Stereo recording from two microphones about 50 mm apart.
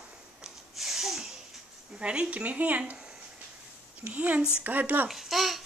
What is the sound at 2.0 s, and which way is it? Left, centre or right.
Speech, centre.